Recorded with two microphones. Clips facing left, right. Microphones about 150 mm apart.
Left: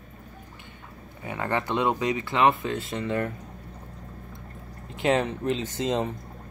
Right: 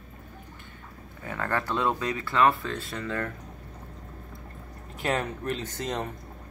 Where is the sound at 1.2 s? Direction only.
15° left (ahead or behind).